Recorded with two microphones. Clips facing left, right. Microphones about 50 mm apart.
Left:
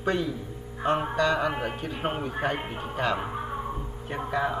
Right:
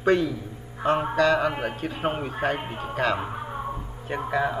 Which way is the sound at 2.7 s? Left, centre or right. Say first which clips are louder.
Right 3 dB; right.